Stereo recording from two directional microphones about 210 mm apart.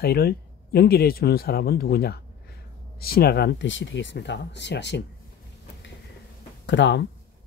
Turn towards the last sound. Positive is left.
turn(degrees=60)  # may be behind; listen again after turning